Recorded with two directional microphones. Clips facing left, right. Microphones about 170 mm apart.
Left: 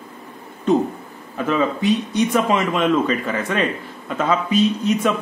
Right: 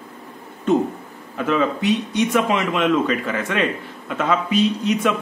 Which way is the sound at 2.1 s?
40° left (ahead or behind).